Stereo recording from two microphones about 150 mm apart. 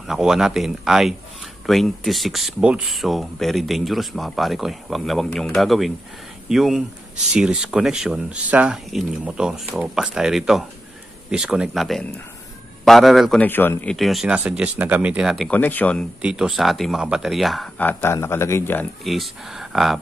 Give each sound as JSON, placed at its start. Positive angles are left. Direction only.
{"t": 0.0, "sound": "speech", "side_deg": -5}
{"t": 13.4, "sound": "speech", "side_deg": 15}
{"t": 13.9, "sound": "speech", "side_deg": 0}
{"t": 15.5, "sound": "speech", "side_deg": 10}
{"t": 16.2, "sound": "speech", "side_deg": -5}
{"t": 17.7, "sound": "speech", "side_deg": 15}
{"t": 19.0, "sound": "speech", "side_deg": 0}